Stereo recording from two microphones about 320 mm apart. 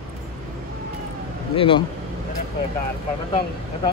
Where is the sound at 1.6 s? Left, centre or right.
Centre.